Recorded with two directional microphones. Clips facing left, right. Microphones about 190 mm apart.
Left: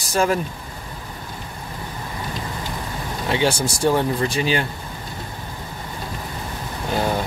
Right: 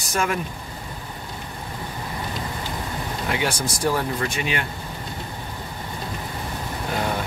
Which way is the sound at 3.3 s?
25° left (ahead or behind).